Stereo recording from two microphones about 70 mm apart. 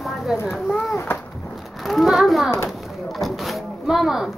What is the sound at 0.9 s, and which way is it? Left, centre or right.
Speech, left.